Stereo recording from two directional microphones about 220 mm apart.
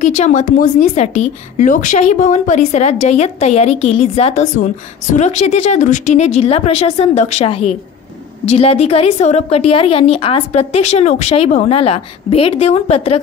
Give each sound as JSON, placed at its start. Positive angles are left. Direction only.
{"t": 0.0, "sound": "a woman's voice", "side_deg": 35}